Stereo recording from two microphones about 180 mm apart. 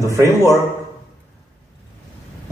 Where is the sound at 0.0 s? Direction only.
15° right (ahead or behind).